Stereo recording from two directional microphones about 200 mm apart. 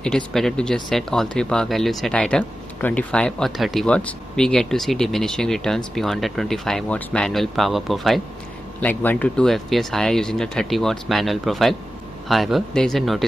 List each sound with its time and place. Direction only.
0.0 s speech: centre (ahead or behind)